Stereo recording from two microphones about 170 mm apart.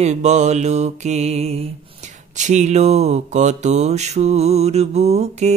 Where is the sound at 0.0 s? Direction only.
40° right (ahead or behind).